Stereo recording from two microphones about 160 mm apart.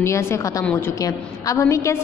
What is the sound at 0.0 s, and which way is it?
A woman's voice, 15° left (ahead or behind).